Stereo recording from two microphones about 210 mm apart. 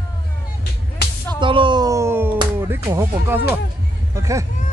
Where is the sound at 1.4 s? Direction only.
25° right (ahead or behind).